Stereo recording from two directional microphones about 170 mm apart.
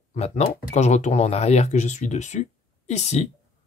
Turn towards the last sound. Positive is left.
turn(degrees=40)  # may be behind; listen again after turning